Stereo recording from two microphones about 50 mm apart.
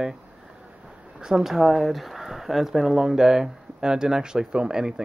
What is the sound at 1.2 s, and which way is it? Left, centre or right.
Speech, centre.